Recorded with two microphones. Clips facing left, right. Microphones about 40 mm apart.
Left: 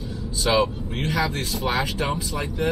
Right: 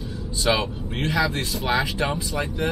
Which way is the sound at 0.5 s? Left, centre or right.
Centre.